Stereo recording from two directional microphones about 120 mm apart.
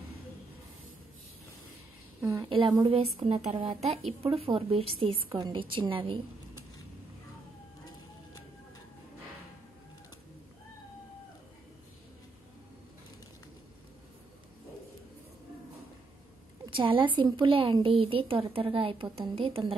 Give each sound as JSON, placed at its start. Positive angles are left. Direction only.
{"t": 2.4, "sound": "a woman's voice", "side_deg": -45}
{"t": 16.6, "sound": "a woman's voice", "side_deg": -45}